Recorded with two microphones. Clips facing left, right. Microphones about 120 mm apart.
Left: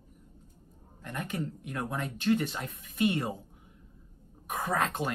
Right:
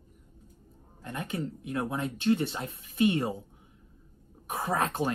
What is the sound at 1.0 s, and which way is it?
Speech, 25° right (ahead or behind).